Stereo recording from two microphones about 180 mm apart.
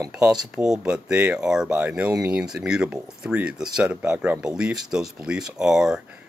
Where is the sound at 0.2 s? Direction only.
5° right (ahead or behind).